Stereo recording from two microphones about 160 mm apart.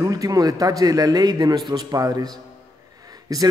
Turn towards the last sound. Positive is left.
turn(degrees=-25)  # may be behind; listen again after turning